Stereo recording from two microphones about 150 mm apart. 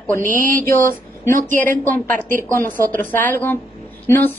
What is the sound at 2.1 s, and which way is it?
A woman's voice, 15° left (ahead or behind).